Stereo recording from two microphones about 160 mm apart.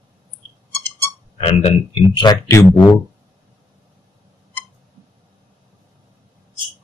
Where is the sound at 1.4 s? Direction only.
35° left (ahead or behind).